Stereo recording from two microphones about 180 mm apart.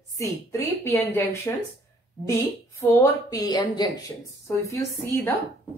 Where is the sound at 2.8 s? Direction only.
15° left (ahead or behind).